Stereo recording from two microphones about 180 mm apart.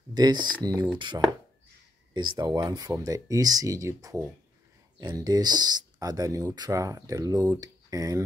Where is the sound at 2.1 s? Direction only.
25° right (ahead or behind).